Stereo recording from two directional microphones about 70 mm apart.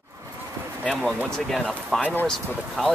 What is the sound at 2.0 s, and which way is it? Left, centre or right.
Speech, left.